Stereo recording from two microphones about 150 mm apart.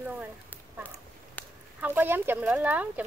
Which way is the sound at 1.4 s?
10° left (ahead or behind).